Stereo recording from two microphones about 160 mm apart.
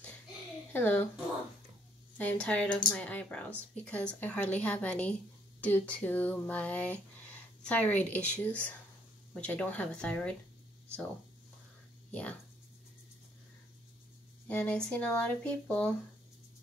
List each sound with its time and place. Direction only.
0.7 s speech: 10° left (ahead or behind)
2.1 s speech: 10° left (ahead or behind)
12.1 s speech: 10° left (ahead or behind)
14.5 s speech: 10° left (ahead or behind)